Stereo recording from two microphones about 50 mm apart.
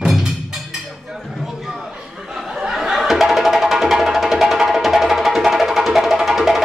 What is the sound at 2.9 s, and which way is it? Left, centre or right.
Music, centre.